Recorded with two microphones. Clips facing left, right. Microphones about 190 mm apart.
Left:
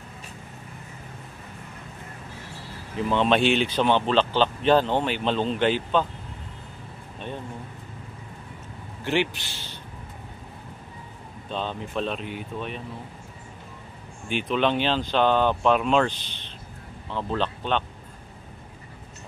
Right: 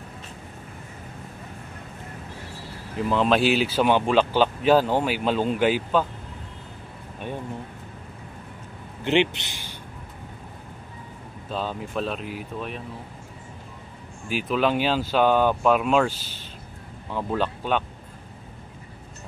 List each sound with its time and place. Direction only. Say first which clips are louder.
3.0 s speech: right 1 dB; centre (ahead or behind)
9.0 s speech: right 4 dB; 20° right (ahead or behind)
11.4 s speech: right 1 dB; 5° right (ahead or behind)
14.3 s speech: right 1 dB; 5° right (ahead or behind)